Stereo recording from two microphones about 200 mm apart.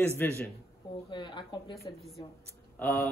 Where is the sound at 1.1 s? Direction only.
25° left (ahead or behind).